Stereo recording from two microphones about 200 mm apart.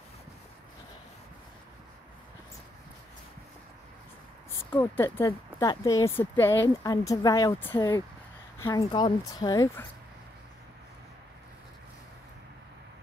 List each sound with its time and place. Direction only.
4.7 s speech: 10° left (ahead or behind)